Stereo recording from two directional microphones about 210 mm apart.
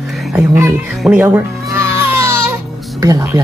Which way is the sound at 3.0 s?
15° right (ahead or behind).